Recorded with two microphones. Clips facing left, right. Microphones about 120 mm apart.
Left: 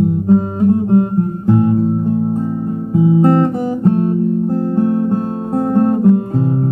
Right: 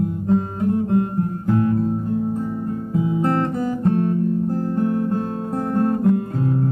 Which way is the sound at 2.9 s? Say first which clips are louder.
Left 9 dB; 25° left (ahead or behind).